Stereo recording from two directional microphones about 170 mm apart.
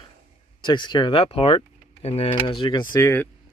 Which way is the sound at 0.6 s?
25° left (ahead or behind).